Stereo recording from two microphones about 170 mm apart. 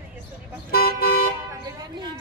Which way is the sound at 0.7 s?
65° left (ahead or behind).